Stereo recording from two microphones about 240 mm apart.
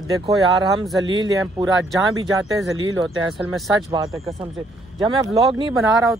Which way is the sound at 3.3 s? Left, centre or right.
Centre.